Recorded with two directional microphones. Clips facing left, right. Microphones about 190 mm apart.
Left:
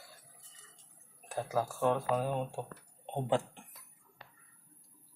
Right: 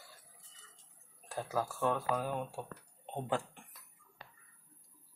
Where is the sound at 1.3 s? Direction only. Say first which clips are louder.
Left 3 dB; 15° left (ahead or behind).